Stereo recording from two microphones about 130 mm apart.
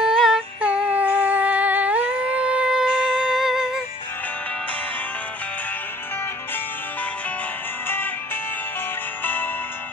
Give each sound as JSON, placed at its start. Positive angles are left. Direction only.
{"t": 0.0, "sound": "humming", "side_deg": -5}
{"t": 9.2, "sound": "music", "side_deg": 15}